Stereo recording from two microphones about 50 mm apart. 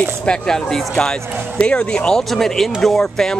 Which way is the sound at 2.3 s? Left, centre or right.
Centre.